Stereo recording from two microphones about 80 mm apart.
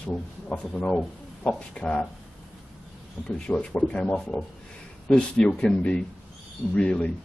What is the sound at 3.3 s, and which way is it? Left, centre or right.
Speech, centre.